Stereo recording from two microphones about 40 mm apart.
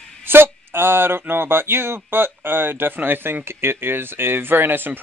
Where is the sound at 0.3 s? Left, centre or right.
Right.